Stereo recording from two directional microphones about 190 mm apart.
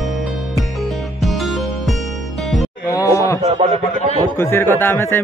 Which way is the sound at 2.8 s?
15° left (ahead or behind).